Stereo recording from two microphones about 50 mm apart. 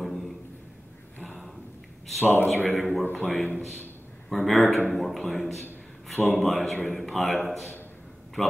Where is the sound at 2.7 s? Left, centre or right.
Centre.